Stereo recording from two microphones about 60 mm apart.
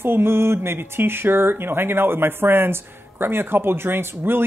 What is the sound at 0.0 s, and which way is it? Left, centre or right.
Speech, right.